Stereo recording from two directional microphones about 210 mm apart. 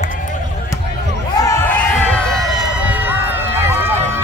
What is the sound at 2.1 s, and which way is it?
Run, centre (ahead or behind).